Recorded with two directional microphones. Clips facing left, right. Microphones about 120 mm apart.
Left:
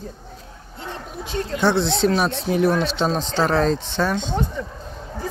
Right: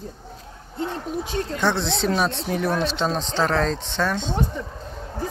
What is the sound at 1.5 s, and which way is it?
Speech, 5° left (ahead or behind).